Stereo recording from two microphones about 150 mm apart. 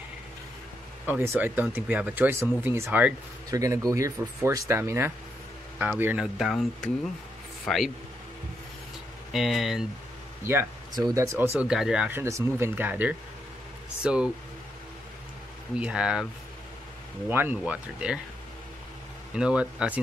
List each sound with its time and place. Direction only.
1.0 s speech: 15° right (ahead or behind)
3.4 s speech: 20° right (ahead or behind); by 7.9 s centre (ahead or behind)
9.3 s speech: centre (ahead or behind)
10.4 s speech: 15° right (ahead or behind)
11.6 s speech: 5° right (ahead or behind)
15.7 s speech: 5° right (ahead or behind)
17.3 s speech: 15° right (ahead or behind)
19.3 s speech: 5° right (ahead or behind)